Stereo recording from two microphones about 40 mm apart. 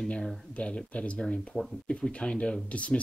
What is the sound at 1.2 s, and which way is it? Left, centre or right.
Speech, left.